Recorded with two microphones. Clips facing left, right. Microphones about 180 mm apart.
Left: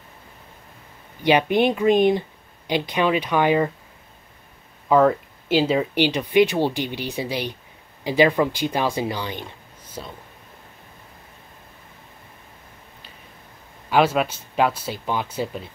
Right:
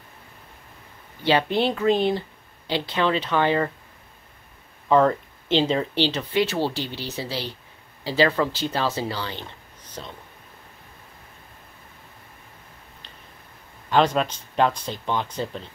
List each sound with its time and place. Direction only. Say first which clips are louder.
1.2 s speech: left 3 dB; 15° left (ahead or behind)
4.8 s speech: left 2 dB; 5° left (ahead or behind)
13.8 s speech: left 1 dB; 10° left (ahead or behind)